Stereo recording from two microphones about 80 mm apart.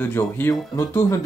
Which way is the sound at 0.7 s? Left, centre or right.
Left.